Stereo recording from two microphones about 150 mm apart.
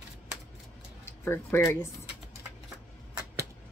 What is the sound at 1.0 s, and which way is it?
Speech, 15° left (ahead or behind).